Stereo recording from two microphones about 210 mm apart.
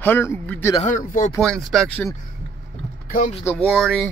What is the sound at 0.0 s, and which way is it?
Speech, 10° left (ahead or behind).